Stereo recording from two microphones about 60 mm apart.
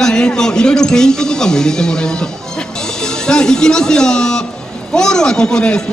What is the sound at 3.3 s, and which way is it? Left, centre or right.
A man's voice, centre.